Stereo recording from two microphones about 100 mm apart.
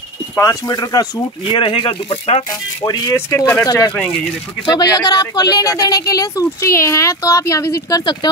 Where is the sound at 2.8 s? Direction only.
25° left (ahead or behind).